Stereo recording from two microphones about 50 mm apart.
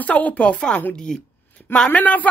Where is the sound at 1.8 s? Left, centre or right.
Left.